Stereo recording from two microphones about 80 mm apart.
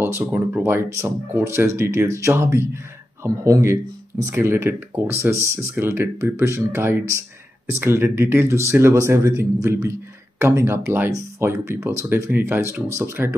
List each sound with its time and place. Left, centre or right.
0.0 s speech: right
3.4 s speech: right
4.4 s speech: right